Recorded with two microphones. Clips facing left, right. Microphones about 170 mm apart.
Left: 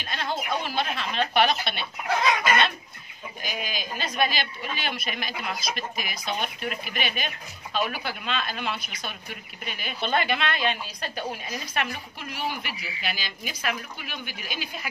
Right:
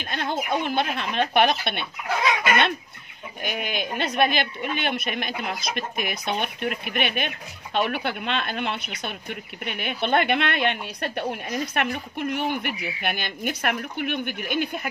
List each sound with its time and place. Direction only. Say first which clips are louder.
0.0 s a woman's voice: right 3 dB; 55° right (ahead or behind)
3.4 s a woman's voice: right 5 dB; 60° right (ahead or behind)